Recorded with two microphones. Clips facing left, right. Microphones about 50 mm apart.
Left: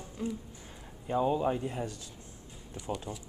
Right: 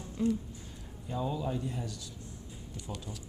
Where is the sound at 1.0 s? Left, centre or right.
Left.